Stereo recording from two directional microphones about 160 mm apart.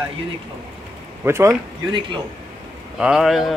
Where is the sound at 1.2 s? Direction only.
15° right (ahead or behind).